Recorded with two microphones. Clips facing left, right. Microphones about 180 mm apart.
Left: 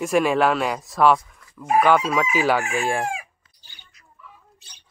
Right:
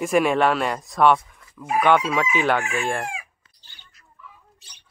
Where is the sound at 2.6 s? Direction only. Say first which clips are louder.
Left 2 dB; 35° left (ahead or behind).